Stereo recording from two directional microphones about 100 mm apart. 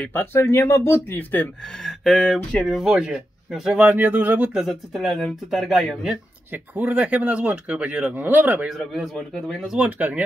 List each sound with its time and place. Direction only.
0.0 s speech: 20° left (ahead or behind)
1.9 s speech: centre (ahead or behind)
3.8 s speech: 20° right (ahead or behind)
4.6 s speech: centre (ahead or behind)
6.5 s speech: 15° right (ahead or behind)
8.6 s speech: centre (ahead or behind)
9.8 s speech: 15° right (ahead or behind)